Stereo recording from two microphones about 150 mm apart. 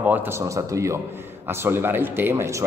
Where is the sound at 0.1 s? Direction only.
20° right (ahead or behind).